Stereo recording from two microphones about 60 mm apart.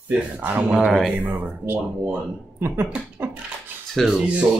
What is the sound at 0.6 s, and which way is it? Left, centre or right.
Speech, right.